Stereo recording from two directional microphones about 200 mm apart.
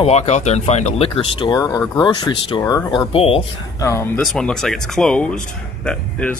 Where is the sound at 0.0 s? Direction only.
30° left (ahead or behind).